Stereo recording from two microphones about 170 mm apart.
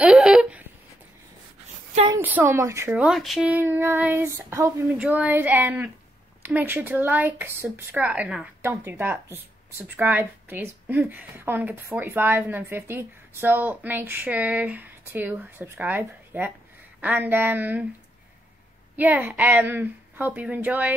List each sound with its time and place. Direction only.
0.0 s a sound: 5° right (ahead or behind)
2.1 s speech: 15° right (ahead or behind)
2.9 s speech: 5° right (ahead or behind)
18.9 s speech: 10° right (ahead or behind)